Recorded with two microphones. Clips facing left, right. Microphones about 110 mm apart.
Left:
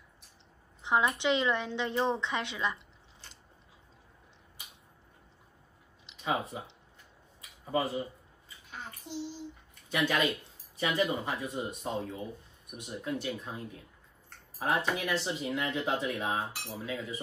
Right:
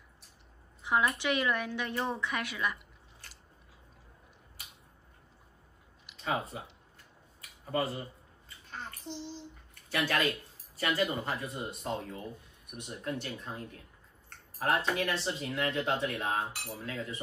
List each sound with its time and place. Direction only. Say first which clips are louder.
0.8 s speech: left 2 dB; 20° left (ahead or behind)
6.1 s a sound: even; 20° left (ahead or behind)
7.7 s speech: left 2 dB; 10° left (ahead or behind)
8.6 s bathtub: right 2 dB; 5° left (ahead or behind)
9.8 s speech: left 1 dB; 20° left (ahead or behind); by 17.0 s centre (ahead or behind)